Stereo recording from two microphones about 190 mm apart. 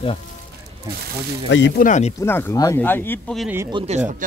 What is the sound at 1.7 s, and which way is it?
Speech, 40° left (ahead or behind).